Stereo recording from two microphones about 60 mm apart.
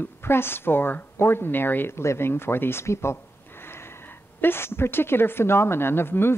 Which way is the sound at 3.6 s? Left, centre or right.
Left.